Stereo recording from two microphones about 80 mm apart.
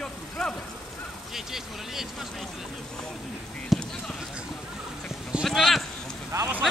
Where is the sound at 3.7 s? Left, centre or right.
Centre.